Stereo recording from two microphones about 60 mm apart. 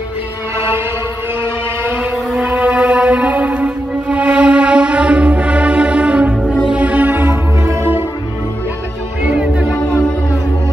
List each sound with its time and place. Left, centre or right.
1.9 s music: right
9.3 s music: centre